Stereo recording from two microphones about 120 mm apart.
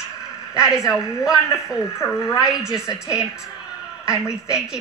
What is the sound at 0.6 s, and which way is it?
Speech, 5° right (ahead or behind).